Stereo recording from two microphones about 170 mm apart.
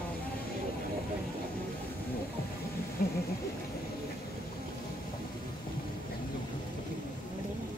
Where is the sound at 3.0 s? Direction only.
60° left (ahead or behind).